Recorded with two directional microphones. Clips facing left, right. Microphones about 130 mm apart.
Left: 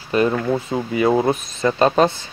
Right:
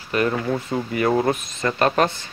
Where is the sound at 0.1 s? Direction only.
25° left (ahead or behind).